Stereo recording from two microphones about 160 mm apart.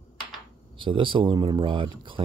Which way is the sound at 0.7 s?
30° right (ahead or behind).